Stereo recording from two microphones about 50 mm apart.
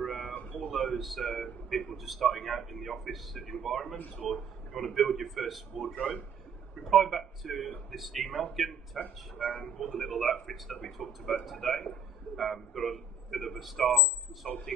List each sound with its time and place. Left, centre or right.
0.0 s a sound: centre
0.9 s speech: centre
3.9 s speech: left
4.3 s speech: centre
5.9 s a man's voice: left
6.8 s speech: centre
9.0 s speech: left
9.6 s speech: centre
10.0 s a man's voice: centre